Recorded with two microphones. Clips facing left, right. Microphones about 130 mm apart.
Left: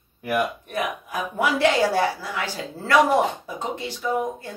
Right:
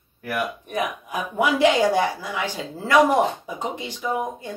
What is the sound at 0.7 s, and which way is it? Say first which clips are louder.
A woman's voice: right 1 dB; 15° right (ahead or behind).